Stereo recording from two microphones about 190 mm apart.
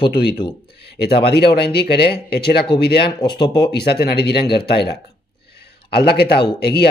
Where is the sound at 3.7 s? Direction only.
55° left (ahead or behind).